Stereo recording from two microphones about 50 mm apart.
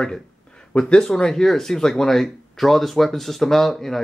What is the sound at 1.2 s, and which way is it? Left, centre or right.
Speech, centre.